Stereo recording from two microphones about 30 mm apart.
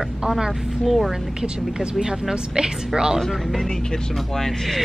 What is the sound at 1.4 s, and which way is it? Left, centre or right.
Speech, right.